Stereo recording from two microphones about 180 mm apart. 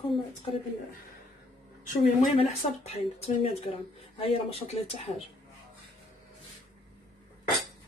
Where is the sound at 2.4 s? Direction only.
35° left (ahead or behind).